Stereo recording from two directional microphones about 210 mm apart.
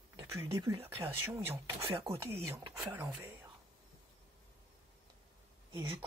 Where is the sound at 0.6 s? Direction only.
25° right (ahead or behind).